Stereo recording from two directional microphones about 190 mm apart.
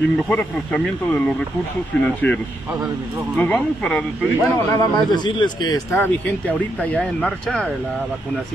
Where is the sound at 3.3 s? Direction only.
5° left (ahead or behind).